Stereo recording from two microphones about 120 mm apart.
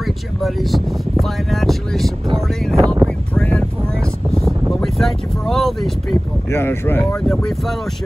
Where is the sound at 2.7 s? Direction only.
30° right (ahead or behind).